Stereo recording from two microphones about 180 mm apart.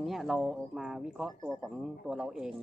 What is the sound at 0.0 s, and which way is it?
Speech, centre (ahead or behind).